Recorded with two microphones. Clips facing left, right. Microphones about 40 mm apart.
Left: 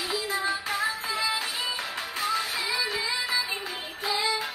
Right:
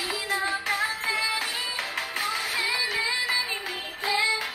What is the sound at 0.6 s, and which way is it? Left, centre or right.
Music, right.